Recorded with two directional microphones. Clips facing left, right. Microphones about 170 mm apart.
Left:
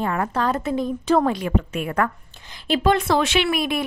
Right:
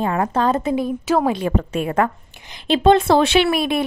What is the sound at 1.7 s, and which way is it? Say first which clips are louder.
A woman's voice: right 4 dB; 25° right (ahead or behind).